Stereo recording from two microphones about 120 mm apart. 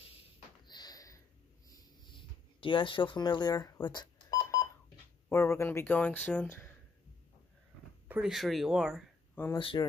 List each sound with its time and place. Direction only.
0.7 s sniff: 35° left (ahead or behind)
1.7 s a sound: 35° left (ahead or behind)
3.8 s cash register: 35° left (ahead or behind)
5.3 s speech: 20° left (ahead or behind)
8.1 s speech: 5° right (ahead or behind)
9.6 s speech: 45° left (ahead or behind)